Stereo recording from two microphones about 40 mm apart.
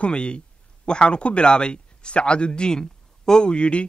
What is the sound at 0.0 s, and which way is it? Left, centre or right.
A man's voice, left.